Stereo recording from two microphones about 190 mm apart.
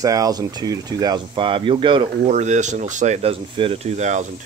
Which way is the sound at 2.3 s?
40° right (ahead or behind).